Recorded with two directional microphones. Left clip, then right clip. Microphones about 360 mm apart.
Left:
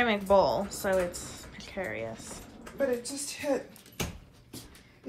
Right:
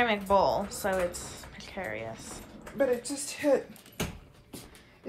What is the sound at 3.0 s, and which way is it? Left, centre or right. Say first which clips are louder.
Speech: right 1 dB; right.